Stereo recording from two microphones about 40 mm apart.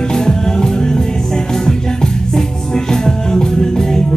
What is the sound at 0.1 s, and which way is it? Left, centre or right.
Music, centre.